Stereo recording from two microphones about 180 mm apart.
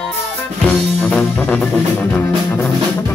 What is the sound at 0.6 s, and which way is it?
Music, 10° left (ahead or behind).